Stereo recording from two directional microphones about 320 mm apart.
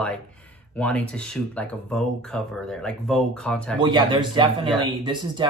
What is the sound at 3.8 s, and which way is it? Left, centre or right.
Speech, centre.